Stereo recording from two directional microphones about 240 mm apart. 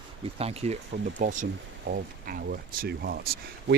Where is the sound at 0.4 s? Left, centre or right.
Right.